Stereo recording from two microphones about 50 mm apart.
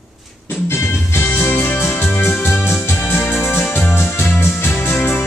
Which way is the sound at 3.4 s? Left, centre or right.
Left.